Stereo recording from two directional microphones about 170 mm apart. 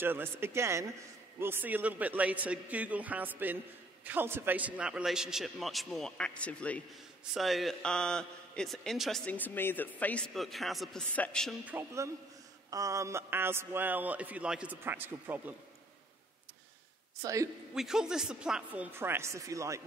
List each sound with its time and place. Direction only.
0.0 s a man's voice: 10° right (ahead or behind); by 11.5 s 5° left (ahead or behind)
11.6 s a man's voice: 15° right (ahead or behind)
17.2 s speech: 20° right (ahead or behind)
17.7 s a man's voice: 5° right (ahead or behind)